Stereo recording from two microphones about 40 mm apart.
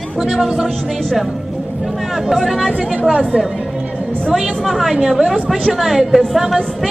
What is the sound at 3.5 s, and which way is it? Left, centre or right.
Music, right.